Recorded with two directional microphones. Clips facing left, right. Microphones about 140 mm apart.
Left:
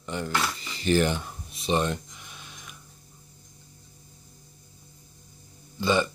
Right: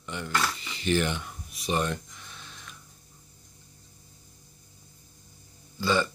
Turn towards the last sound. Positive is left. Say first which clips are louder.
# left 2 dB
turn(degrees=20)  # may be behind; listen again after turning